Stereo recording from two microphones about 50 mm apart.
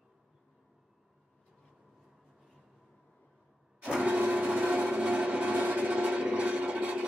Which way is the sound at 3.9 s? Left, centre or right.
Right.